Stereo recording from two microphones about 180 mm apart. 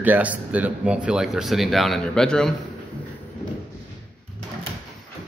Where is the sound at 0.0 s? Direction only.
10° right (ahead or behind).